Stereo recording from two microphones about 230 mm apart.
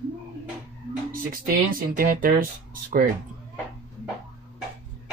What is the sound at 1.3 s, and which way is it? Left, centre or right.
Speech, right.